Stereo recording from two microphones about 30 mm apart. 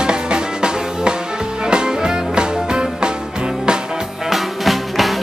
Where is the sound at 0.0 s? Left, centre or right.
Right.